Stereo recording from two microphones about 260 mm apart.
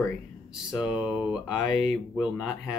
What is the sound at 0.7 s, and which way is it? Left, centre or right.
Speech, centre.